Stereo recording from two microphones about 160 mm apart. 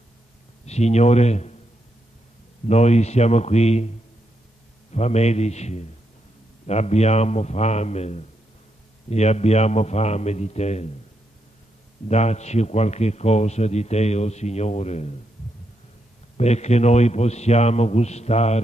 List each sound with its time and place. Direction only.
0.7 s a man's voice: 45° left (ahead or behind)
2.7 s a man's voice: 45° left (ahead or behind)
4.9 s a man's voice: 45° left (ahead or behind)
12.1 s a man's voice: 45° left (ahead or behind)
16.3 s a man's voice: 45° left (ahead or behind)